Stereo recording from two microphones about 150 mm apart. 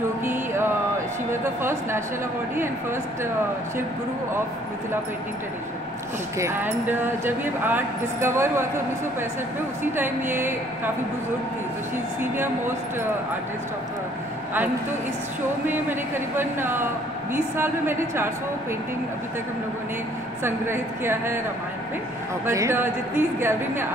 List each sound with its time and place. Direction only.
0.2 s music: 15° right (ahead or behind)
1.4 s speech: 15° right (ahead or behind)
6.3 s speech: 15° right (ahead or behind)
9.9 s speech: 15° right (ahead or behind)
12.2 s speech: 15° right (ahead or behind)
15.7 s speech: 15° right (ahead or behind)
20.4 s speech: 15° right (ahead or behind)
22.5 s speech: 20° right (ahead or behind)